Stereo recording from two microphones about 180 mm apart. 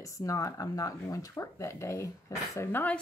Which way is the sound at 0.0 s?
20° left (ahead or behind).